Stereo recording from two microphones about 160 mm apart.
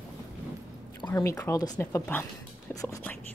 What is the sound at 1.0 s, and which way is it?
Speech, 20° left (ahead or behind).